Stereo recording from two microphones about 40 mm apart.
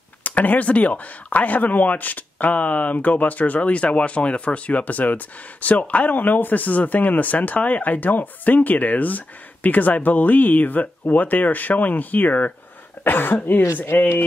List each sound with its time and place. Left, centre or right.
0.2 s speech: left
13.0 s speech: left